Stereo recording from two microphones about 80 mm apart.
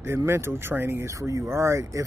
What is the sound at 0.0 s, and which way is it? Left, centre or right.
Speech, right.